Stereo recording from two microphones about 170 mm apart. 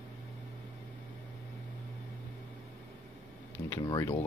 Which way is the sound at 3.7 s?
20° left (ahead or behind).